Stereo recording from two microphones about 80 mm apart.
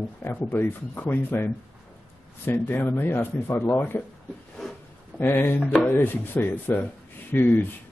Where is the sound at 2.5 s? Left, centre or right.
Left.